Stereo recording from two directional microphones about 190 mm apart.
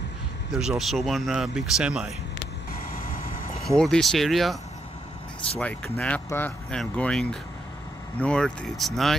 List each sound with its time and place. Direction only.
0.5 s speech: 5° right (ahead or behind)
2.9 s vehicle: 50° left (ahead or behind)
3.6 s speech: 5° left (ahead or behind)
5.6 s speech: 5° left (ahead or behind)